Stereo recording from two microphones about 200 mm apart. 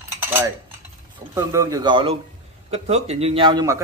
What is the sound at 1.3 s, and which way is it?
A man's voice, 15° right (ahead or behind).